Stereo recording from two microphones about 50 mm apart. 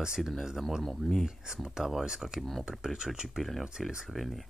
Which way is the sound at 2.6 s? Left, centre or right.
Centre.